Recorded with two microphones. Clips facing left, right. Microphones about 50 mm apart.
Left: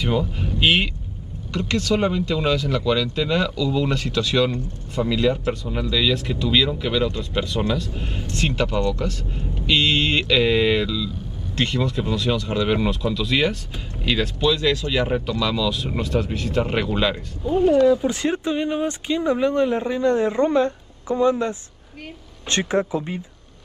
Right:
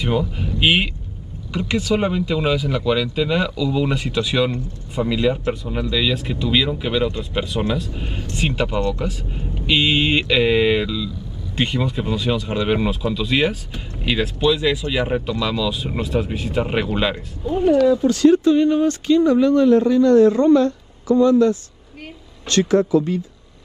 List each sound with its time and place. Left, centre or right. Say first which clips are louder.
0.6 s speech: right 1 dB; centre
17.4 s speech: left 1 dB; centre
17.9 s speech: right 8 dB; left